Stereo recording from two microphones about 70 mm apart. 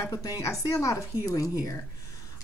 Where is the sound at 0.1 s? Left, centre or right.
Left.